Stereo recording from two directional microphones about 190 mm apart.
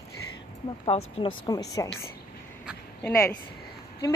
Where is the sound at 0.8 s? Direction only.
30° left (ahead or behind).